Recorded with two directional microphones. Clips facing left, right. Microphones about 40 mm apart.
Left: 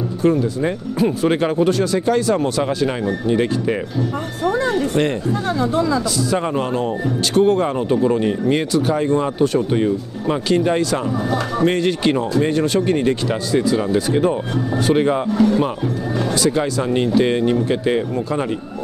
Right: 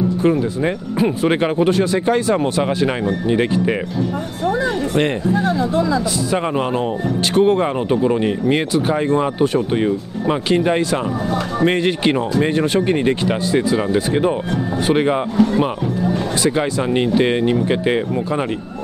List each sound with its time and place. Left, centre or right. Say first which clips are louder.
0.2 s speech: left 3 dB; right
6.1 s speech: even; right